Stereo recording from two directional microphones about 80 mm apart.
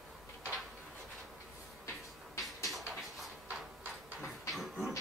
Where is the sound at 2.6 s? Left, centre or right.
Centre.